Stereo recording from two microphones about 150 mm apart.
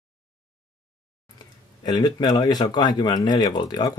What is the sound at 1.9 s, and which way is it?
Speech, 25° left (ahead or behind).